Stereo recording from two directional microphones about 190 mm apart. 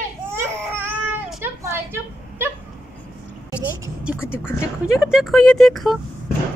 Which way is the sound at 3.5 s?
5° right (ahead or behind).